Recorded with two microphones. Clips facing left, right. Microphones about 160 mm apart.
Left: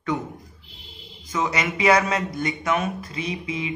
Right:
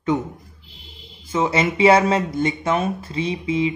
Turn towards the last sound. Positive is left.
turn(degrees=-30)  # may be behind; listen again after turning